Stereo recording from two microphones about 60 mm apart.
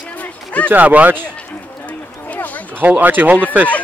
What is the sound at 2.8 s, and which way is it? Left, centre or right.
Speech, right.